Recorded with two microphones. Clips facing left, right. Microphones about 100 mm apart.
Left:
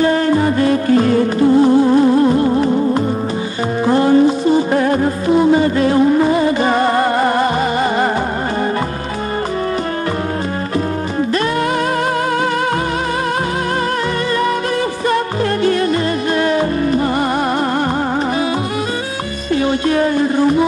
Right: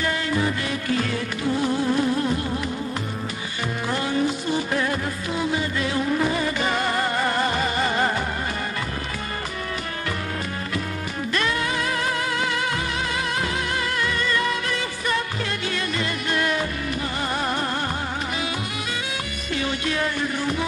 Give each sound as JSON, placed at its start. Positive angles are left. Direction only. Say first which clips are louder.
{"t": 0.0, "sound": "music", "louder": "left 11 dB", "side_deg": 40}
{"t": 15.6, "sound": "music", "louder": "left 14 dB", "side_deg": 40}
{"t": 19.5, "sound": "music", "louder": "left 11 dB", "side_deg": 35}